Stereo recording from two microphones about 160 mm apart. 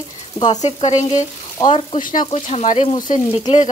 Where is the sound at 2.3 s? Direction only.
45° left (ahead or behind).